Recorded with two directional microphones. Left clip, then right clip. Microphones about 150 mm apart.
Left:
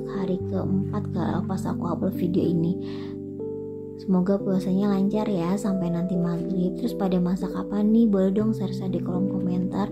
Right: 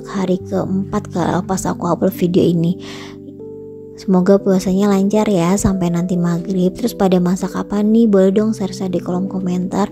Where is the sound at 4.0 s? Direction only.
50° right (ahead or behind).